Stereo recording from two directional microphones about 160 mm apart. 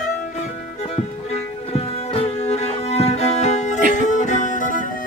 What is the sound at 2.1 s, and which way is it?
Music, 40° left (ahead or behind).